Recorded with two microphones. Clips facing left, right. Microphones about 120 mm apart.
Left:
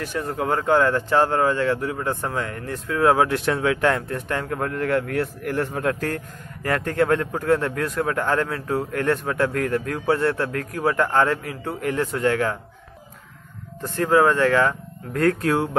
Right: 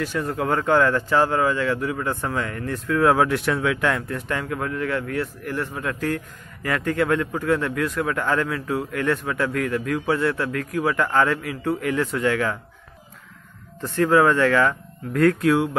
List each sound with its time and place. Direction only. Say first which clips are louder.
0.0 s speech: right 1 dB; 20° left (ahead or behind); by 12.5 s 35° left (ahead or behind)
13.9 s speech: right 1 dB; 25° left (ahead or behind)
15.2 s speech: right 2 dB; 35° left (ahead or behind)